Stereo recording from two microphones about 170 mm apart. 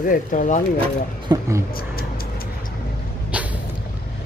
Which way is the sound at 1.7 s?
60° left (ahead or behind).